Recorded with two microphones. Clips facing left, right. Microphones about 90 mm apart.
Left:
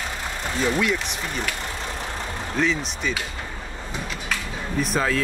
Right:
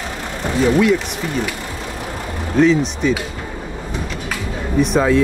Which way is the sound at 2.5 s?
Centre (ahead or behind).